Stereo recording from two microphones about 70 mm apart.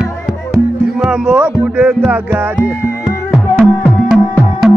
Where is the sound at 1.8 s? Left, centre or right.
Centre.